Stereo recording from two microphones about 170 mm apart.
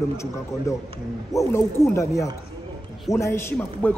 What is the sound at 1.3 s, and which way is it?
A man's voice, 15° left (ahead or behind).